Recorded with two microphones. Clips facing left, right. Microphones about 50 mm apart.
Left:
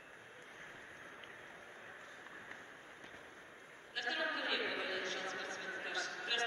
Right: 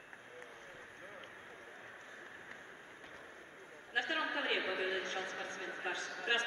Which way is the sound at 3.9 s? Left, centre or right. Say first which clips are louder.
Right 3 dB; right.